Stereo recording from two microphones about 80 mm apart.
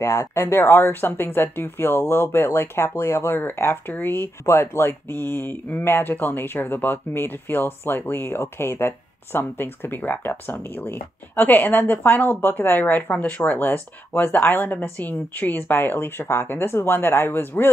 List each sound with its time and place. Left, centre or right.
0.0 s speech: left